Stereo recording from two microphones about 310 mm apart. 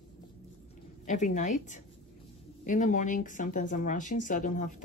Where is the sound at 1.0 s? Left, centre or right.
Left.